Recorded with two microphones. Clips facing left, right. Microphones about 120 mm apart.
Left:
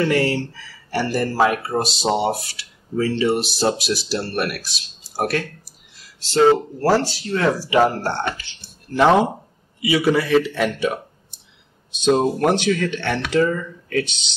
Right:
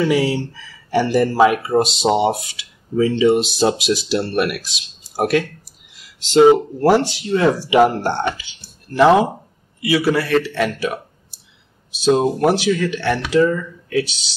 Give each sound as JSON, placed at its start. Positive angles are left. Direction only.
{"t": 0.0, "sound": "speech", "side_deg": -10}
{"t": 6.2, "sound": "speech", "side_deg": -15}
{"t": 8.8, "sound": "speech", "side_deg": 0}